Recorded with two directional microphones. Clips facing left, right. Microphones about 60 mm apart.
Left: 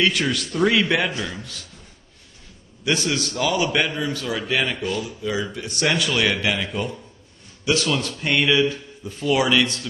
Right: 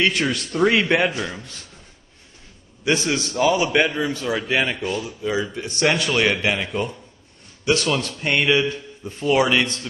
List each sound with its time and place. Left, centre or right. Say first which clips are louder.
0.0 s a man's voice: even; right
2.8 s a man's voice: right 2 dB; right